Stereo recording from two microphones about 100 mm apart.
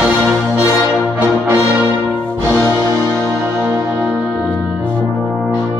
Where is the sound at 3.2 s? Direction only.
10° right (ahead or behind).